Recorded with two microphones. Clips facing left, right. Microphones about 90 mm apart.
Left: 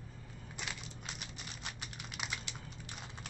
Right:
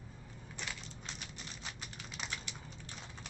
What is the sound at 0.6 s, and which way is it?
Typewriter, 5° left (ahead or behind).